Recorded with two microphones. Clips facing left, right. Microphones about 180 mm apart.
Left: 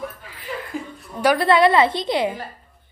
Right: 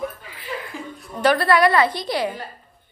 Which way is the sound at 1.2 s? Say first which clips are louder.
Even; 10° left (ahead or behind).